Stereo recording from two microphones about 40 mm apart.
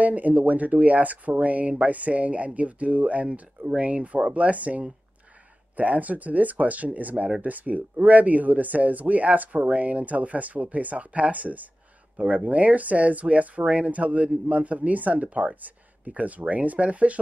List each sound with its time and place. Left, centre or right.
0.0 s speech: right